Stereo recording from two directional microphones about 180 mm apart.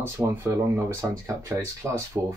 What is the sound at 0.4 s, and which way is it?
Speech, 15° right (ahead or behind).